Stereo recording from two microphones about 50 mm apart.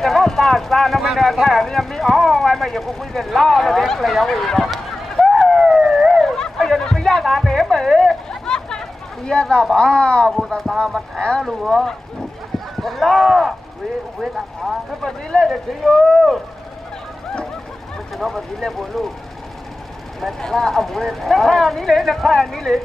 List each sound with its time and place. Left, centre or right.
0.0 s speech: centre
5.3 s police car: centre
6.2 s music: centre
9.8 s speech: centre
11.4 s speech: centre
18.1 s speech: centre
20.2 s speech: centre